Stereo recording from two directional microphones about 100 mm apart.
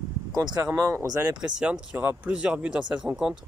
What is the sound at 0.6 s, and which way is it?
Speech, 25° right (ahead or behind).